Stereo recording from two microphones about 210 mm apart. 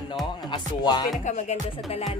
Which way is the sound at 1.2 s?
35° left (ahead or behind).